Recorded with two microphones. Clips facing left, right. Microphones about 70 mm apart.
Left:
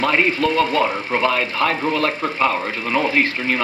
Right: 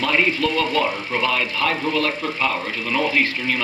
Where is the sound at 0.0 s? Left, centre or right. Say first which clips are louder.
Left 2 dB; left.